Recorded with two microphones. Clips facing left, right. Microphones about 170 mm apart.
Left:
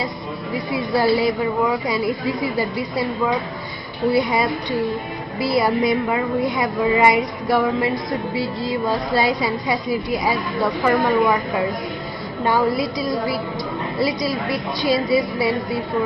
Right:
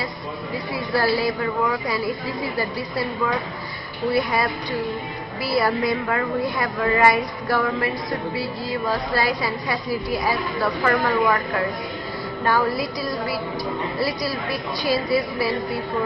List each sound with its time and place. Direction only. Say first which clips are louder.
0.9 s a woman's voice: left 3 dB; 20° left (ahead or behind)
9.1 s a woman's voice: left 4 dB; 20° left (ahead or behind)
13.9 s a woman's voice: left 7 dB; 20° left (ahead or behind)